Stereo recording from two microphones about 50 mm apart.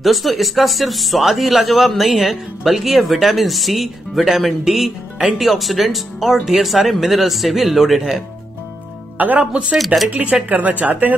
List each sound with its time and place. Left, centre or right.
0.0 s speech: centre
9.2 s a woman's voice: right